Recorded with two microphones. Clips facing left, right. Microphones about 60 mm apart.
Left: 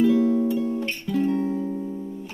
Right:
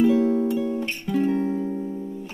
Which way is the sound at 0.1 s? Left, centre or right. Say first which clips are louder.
Even; right.